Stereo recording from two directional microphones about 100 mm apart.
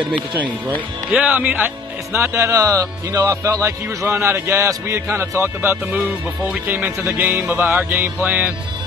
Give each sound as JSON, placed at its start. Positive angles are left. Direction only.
{"t": 0.3, "sound": "music", "side_deg": -20}
{"t": 1.1, "sound": "speech", "side_deg": -15}
{"t": 2.3, "sound": "speech", "side_deg": -30}
{"t": 6.5, "sound": "music", "side_deg": -20}